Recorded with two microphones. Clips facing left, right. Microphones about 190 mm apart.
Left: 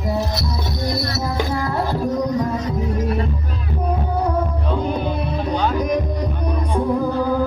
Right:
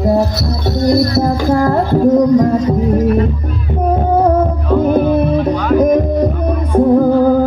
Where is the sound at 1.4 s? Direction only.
50° right (ahead or behind).